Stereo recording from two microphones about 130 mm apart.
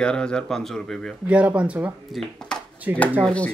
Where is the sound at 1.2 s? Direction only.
10° right (ahead or behind).